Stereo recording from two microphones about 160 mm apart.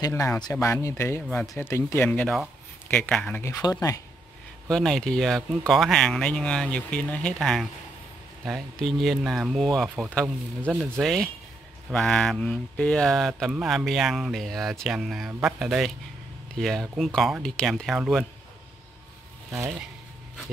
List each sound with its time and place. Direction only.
0.0 s speech: 20° left (ahead or behind)
4.6 s speech: 5° left (ahead or behind)